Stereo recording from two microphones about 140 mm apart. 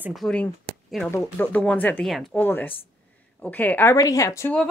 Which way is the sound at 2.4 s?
15° left (ahead or behind).